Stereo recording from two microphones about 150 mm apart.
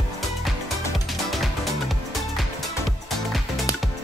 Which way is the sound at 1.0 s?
Centre (ahead or behind).